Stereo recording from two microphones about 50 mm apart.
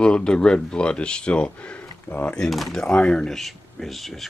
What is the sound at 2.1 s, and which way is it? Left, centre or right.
Speech, left.